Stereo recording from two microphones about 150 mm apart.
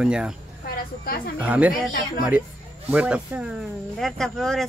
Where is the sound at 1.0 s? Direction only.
75° left (ahead or behind).